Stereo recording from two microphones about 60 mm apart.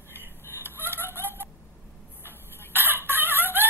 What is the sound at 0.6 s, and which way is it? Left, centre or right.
Chicken, left.